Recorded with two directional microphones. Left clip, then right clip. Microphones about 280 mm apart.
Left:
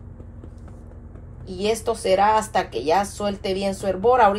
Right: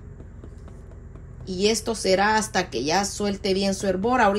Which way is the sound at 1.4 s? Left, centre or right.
Right.